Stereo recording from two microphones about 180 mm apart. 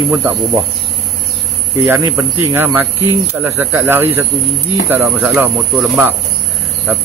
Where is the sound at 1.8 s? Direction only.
10° right (ahead or behind).